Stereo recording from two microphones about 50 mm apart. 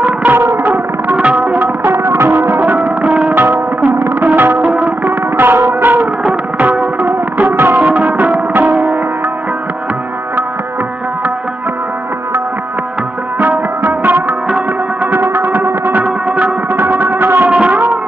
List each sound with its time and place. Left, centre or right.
0.0 s music: right
1.6 s music: right
2.3 s music: right
5.4 s music: right
7.5 s music: right
7.8 s music: right
13.4 s music: right
17.5 s a sound: right